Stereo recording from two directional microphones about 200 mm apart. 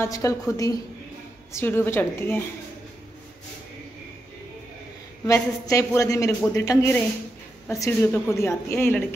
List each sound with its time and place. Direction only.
0.0 s a man's voice: 15° left (ahead or behind)
5.2 s a man's voice: 15° left (ahead or behind)